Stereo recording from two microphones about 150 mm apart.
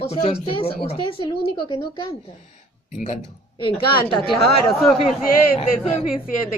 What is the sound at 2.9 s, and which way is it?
Speech, 55° left (ahead or behind).